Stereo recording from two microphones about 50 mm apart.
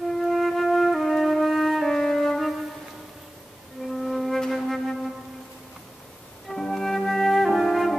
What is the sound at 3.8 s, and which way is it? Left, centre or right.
Flute, centre.